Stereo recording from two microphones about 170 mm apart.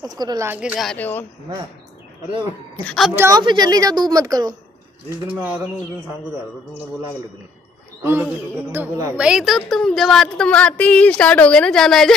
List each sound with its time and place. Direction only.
0.0 s a woman's voice: 25° right (ahead or behind)
0.5 s a woman's voice: 5° right (ahead or behind); by 1.2 s 10° left (ahead or behind)
3.2 s a woman's voice: 20° right (ahead or behind)
5.3 s a woman's voice: 5° right (ahead or behind)
8.0 s a woman's voice: 15° right (ahead or behind)
9.1 s a woman's voice: 5° right (ahead or behind)